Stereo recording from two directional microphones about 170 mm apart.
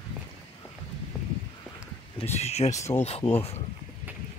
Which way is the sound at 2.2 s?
40° left (ahead or behind).